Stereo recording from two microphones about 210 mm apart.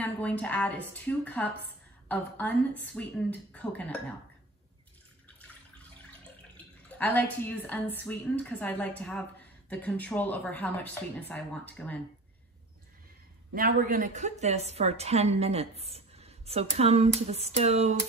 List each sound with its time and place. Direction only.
0.0 s speech: 5° left (ahead or behind)
6.5 s speech: 10° left (ahead or behind)
13.5 s a woman's voice: 45° right (ahead or behind)